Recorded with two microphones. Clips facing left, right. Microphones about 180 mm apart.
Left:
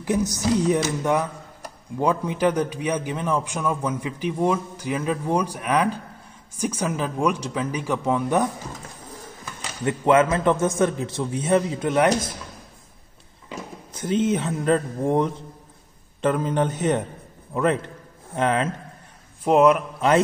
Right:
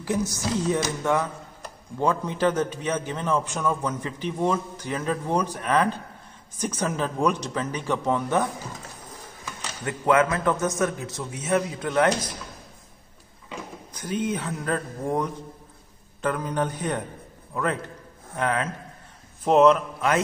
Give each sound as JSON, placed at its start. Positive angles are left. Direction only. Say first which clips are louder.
{"t": 0.0, "sound": "a man's voice", "louder": "left 4 dB", "side_deg": 20}
{"t": 9.8, "sound": "a man's voice", "louder": "left 3 dB", "side_deg": 25}
{"t": 13.9, "sound": "a man's voice", "louder": "left 6 dB", "side_deg": 25}
{"t": 19.4, "sound": "a man's voice", "louder": "left 1 dB", "side_deg": 10}